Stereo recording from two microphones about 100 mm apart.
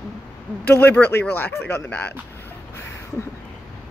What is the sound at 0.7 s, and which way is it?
Speech, 15° left (ahead or behind).